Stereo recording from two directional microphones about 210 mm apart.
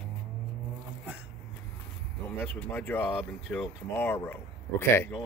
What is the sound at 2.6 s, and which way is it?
Speech, 5° left (ahead or behind).